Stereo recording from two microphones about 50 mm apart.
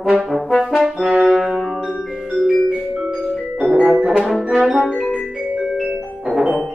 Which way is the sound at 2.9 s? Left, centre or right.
Centre.